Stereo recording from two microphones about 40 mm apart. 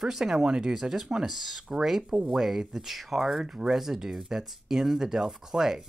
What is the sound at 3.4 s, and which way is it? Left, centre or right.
Speech, centre.